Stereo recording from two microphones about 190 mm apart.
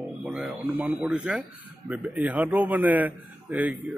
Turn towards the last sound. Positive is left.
turn(degrees=-10)  # may be behind; listen again after turning